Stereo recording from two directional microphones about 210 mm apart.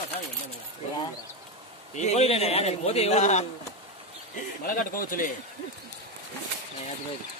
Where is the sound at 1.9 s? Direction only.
30° left (ahead or behind).